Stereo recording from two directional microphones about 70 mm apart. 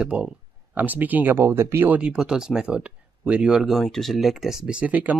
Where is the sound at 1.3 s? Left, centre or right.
Right.